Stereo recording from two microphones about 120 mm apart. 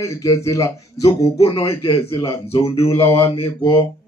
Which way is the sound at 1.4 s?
50° left (ahead or behind).